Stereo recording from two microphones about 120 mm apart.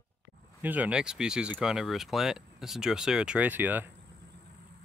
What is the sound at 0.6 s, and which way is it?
Speech, 10° right (ahead or behind).